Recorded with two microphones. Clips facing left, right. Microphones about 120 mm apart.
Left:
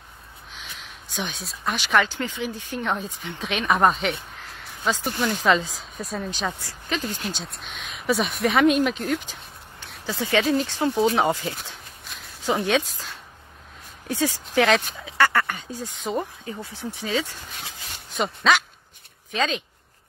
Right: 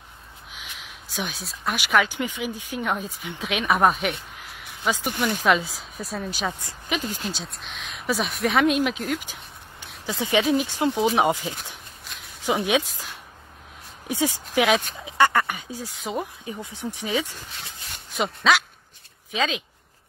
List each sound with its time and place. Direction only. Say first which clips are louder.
0.5 s a sound: even; 5° right (ahead or behind)
1.8 s speech: even; 10° right (ahead or behind)
7.2 s speech: even; centre (ahead or behind)
9.2 s a sound: even; 15° right (ahead or behind)
10.0 s speech: even; 15° right (ahead or behind)
12.1 s walk: even; centre (ahead or behind)
12.6 s speech: even; 10° right (ahead or behind)
15.9 s speech: left 2 dB; centre (ahead or behind)
16.6 s speech: right 1 dB; 15° right (ahead or behind)
18.1 s speech: even; centre (ahead or behind)